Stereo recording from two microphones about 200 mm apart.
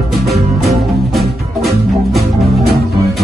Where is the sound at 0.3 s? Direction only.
Centre (ahead or behind).